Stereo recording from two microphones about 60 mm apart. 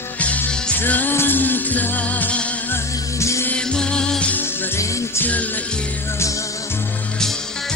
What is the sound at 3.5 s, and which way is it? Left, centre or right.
Music, centre.